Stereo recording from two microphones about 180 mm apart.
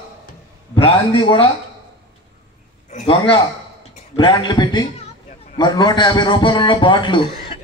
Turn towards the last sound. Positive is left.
turn(degrees=25)  # may be behind; listen again after turning